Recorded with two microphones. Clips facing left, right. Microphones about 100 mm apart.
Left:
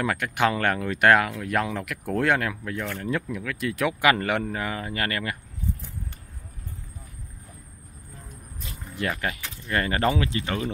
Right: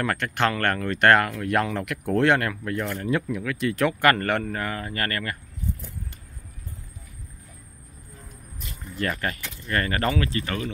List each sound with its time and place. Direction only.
0.0 s speech: 10° left (ahead or behind)
8.9 s speech: 10° left (ahead or behind)